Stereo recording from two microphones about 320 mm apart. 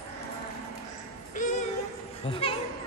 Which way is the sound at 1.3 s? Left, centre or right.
Left.